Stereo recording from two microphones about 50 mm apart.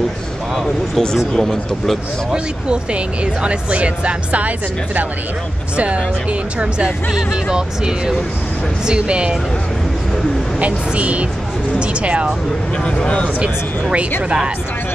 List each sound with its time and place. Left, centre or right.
0.9 s speech: centre
2.3 s speech: right
6.6 s speech: right
10.6 s speech: right
12.8 s speech: left